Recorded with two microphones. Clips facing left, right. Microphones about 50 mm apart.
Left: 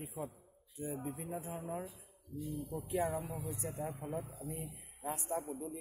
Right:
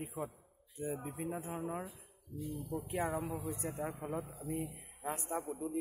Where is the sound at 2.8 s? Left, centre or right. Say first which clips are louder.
Left 1 dB; right.